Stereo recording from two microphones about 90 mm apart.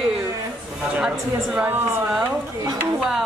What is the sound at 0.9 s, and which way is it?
Speech, 10° right (ahead or behind).